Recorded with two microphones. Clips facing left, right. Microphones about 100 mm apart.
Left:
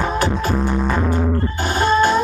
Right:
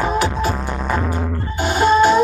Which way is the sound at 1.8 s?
15° right (ahead or behind).